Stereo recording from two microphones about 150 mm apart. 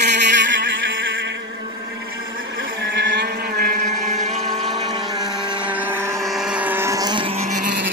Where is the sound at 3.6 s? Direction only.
75° right (ahead or behind).